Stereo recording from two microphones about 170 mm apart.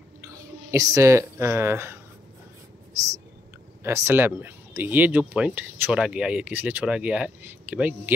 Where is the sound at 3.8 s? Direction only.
15° right (ahead or behind).